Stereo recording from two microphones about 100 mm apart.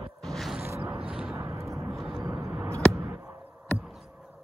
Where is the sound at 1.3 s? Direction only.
30° right (ahead or behind).